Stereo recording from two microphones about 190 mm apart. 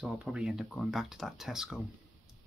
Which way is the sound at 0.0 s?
5° right (ahead or behind).